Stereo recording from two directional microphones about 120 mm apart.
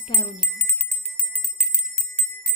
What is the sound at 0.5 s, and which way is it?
Bicycle bell, 10° left (ahead or behind).